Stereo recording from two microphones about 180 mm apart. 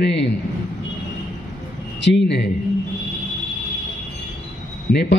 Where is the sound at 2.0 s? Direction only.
80° left.